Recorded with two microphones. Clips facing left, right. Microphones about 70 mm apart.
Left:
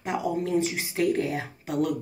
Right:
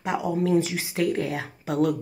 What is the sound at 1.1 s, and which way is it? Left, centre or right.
Speech, right.